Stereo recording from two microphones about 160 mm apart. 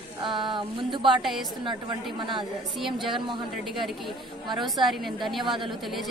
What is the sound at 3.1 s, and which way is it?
Speech, 30° right (ahead or behind).